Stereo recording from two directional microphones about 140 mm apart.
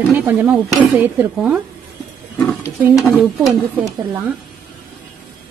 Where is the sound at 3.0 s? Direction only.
5° right (ahead or behind).